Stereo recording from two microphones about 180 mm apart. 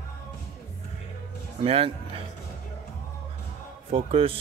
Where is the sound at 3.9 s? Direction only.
30° right (ahead or behind).